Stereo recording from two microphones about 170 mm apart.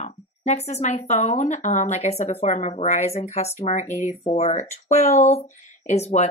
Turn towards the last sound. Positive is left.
turn(degrees=40)  # may be behind; listen again after turning